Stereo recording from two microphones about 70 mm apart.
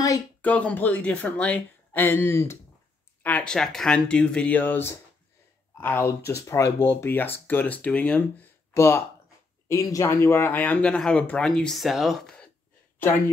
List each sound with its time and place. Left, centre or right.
0.4 s speech: centre
2.0 s speech: left
3.2 s a sound: left
3.4 s speech: centre
4.6 s speech: left
6.4 s speech: left
6.8 s speech: left
8.7 s speech: left
10.0 s speech: left; by 11.5 s centre
11.5 s speech: centre